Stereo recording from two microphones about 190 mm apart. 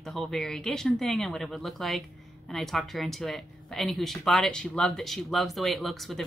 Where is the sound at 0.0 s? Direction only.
Centre (ahead or behind).